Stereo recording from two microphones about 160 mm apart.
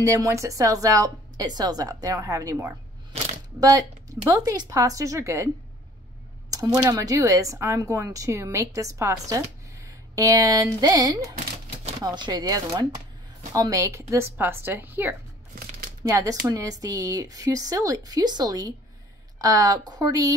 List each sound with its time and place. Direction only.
0.0 s speech: 20° right (ahead or behind)
3.5 s speech: 20° right (ahead or behind)
6.5 s speech: 20° right (ahead or behind)